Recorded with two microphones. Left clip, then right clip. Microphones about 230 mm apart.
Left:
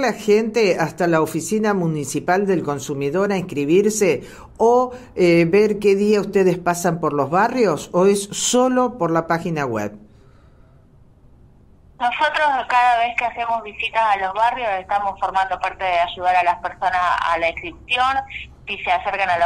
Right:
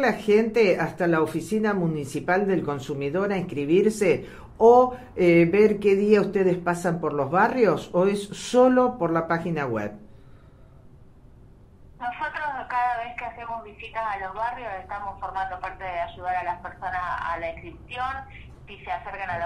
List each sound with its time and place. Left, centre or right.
0.0 s speech: left
12.0 s a woman's voice: left